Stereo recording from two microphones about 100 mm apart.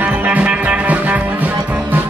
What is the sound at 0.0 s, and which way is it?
Music, 15° right (ahead or behind).